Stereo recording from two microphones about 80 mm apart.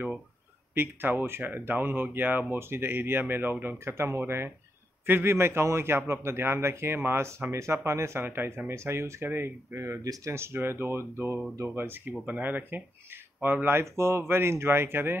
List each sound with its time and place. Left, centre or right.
0.7 s a man's voice: right
10.0 s speech: right
10.3 s a man's voice: right